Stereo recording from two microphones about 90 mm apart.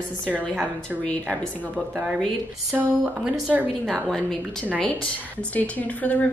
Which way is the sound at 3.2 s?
15° right (ahead or behind).